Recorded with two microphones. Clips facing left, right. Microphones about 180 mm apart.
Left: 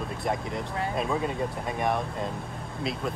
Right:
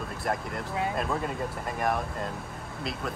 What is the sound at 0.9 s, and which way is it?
Speech, centre (ahead or behind).